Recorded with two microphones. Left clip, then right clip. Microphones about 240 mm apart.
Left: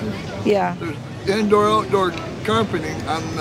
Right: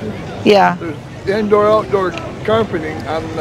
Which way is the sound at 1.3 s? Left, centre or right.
Left.